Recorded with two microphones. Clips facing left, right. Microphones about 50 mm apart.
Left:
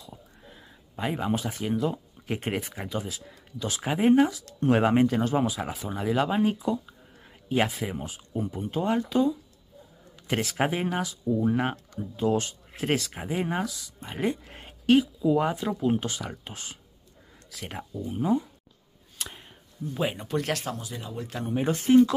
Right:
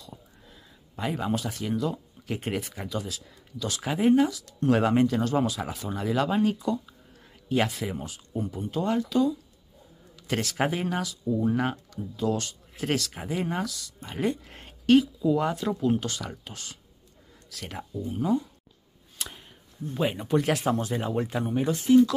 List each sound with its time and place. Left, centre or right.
0.5 s speech: left
17.9 s speech: centre
19.1 s speech: centre
20.7 s speech: right
21.3 s speech: centre
21.6 s speech: left